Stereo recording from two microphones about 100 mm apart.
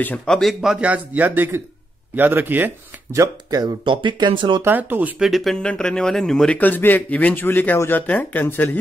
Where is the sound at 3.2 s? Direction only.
40° right (ahead or behind).